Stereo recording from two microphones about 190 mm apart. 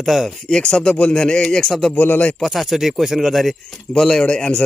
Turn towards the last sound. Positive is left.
turn(degrees=5)  # may be behind; listen again after turning